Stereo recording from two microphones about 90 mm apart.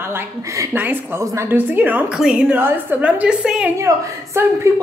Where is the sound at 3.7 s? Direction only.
35° right (ahead or behind).